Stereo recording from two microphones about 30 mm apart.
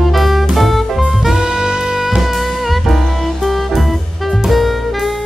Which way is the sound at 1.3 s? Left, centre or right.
Right.